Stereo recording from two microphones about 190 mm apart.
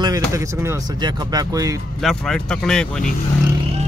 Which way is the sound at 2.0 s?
5° left (ahead or behind).